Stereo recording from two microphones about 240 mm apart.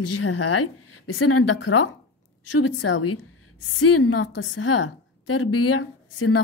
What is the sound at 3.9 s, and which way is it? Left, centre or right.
A woman's voice, left.